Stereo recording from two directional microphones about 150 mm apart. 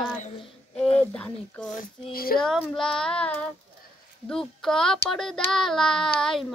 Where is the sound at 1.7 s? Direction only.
80° left.